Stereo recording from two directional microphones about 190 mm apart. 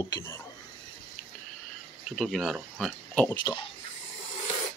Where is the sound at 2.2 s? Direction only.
Centre (ahead or behind).